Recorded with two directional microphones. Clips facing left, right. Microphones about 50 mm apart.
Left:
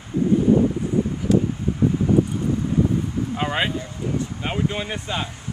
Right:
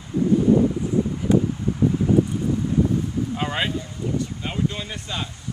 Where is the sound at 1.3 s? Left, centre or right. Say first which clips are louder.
Even; right.